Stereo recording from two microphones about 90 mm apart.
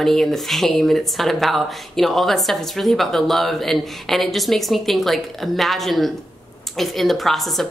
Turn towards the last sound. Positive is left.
turn(degrees=0)  # may be behind; listen again after turning